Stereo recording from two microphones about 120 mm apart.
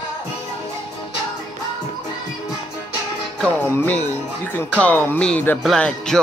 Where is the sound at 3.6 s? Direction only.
20° left (ahead or behind).